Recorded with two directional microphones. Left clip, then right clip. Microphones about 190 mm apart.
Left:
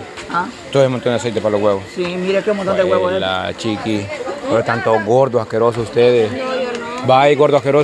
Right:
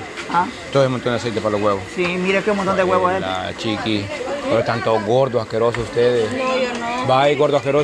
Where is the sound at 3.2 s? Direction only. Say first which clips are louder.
Left 4 dB; 30° left (ahead or behind).